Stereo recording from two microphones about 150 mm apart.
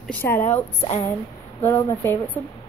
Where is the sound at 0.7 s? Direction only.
40° left (ahead or behind).